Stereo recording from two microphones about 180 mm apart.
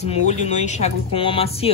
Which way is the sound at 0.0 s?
40° left (ahead or behind).